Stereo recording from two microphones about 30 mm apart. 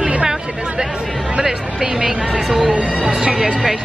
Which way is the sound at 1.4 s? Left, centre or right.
Right.